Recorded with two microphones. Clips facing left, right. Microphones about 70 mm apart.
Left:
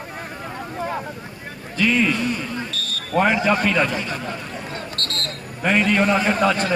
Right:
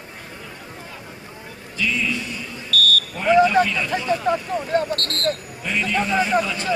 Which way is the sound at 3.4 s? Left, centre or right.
Left.